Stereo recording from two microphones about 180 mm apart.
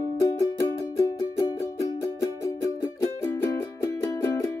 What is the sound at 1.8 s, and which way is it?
Music, 15° left (ahead or behind).